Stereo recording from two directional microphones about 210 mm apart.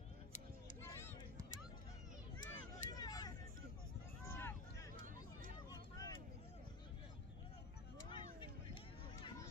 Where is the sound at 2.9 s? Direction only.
15° left (ahead or behind).